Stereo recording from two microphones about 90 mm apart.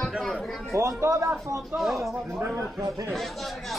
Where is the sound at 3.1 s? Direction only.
Centre (ahead or behind).